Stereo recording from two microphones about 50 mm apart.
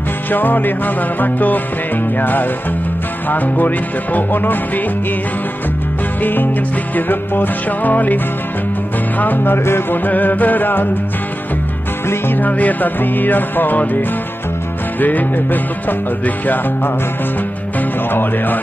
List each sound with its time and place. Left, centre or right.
0.3 s music: left
6.2 s music: left
9.2 s music: left
10.0 s music: left
12.4 s music: left
17.7 s music: left